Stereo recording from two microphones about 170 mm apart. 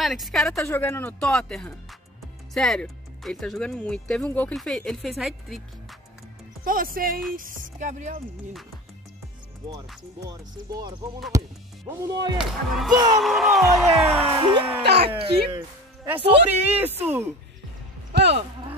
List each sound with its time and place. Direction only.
0.0 s speech: centre (ahead or behind)
0.7 s speech: 15° left (ahead or behind)
6.6 s speech: 55° right (ahead or behind)
9.7 s speech: 20° right (ahead or behind)
12.4 s speech: centre (ahead or behind)
12.9 s speech: 20° right (ahead or behind)
13.2 s speech: centre (ahead or behind)
14.8 s speech: 75° right (ahead or behind)
15.0 s speech: 30° right (ahead or behind)
16.4 s speech: 10° right (ahead or behind)
18.1 s speech: 85° right